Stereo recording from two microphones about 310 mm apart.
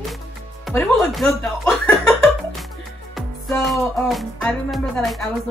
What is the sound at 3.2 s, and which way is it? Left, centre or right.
Music, centre.